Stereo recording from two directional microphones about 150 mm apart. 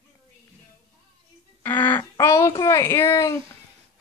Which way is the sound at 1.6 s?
10° left (ahead or behind).